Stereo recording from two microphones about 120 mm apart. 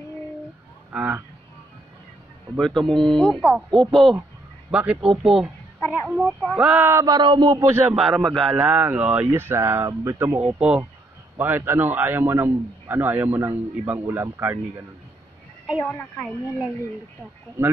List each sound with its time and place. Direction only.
0.9 s a man's voice: 15° right (ahead or behind)
2.5 s a man's voice: centre (ahead or behind); by 7.8 s 25° right (ahead or behind)
7.9 s speech: 5° right (ahead or behind)
8.5 s speech: 10° right (ahead or behind)
10.4 s a man's voice: 10° right (ahead or behind)
15.8 s a woman's voice: 15° left (ahead or behind)
16.3 s speech: 5° right (ahead or behind)